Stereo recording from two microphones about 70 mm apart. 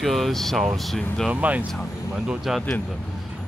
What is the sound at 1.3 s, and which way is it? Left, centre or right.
Speech, right.